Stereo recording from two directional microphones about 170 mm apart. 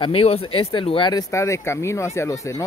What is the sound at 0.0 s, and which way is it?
Speech, 35° left (ahead or behind).